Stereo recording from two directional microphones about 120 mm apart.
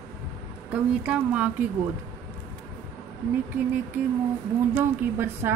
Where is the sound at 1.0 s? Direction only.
10° right (ahead or behind).